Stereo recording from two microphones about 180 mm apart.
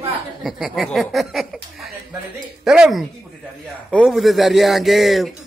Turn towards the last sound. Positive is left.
turn(degrees=0)  # may be behind; listen again after turning